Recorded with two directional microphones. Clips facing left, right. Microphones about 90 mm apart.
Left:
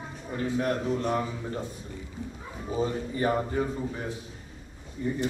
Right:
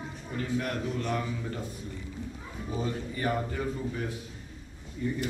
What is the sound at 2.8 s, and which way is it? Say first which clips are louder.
Speech: left 5 dB; 25° left (ahead or behind).